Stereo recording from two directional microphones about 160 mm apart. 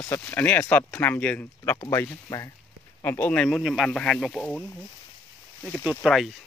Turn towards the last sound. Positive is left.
turn(degrees=0)  # may be behind; listen again after turning